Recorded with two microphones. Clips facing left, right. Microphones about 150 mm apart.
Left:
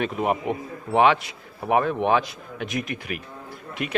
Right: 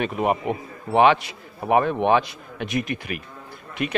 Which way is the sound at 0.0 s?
5° right (ahead or behind).